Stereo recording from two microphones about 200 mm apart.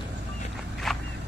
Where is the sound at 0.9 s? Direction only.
Centre (ahead or behind).